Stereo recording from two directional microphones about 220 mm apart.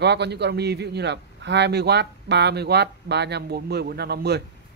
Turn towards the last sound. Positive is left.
turn(degrees=-45)  # may be behind; listen again after turning